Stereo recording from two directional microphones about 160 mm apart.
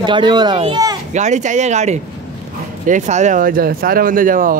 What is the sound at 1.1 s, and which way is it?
Speech, 50° right (ahead or behind).